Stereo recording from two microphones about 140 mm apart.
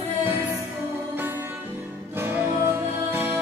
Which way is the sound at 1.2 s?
15° right (ahead or behind).